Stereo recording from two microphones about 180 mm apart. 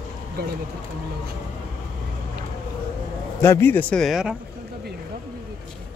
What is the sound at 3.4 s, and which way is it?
Speech, 15° left (ahead or behind).